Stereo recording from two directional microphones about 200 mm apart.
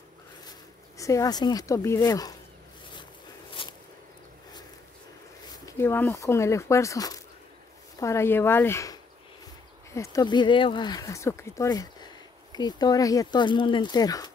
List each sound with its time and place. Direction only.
0.9 s speech: 15° left (ahead or behind)
3.6 s walk: 25° left (ahead or behind)
5.7 s speech: 10° left (ahead or behind)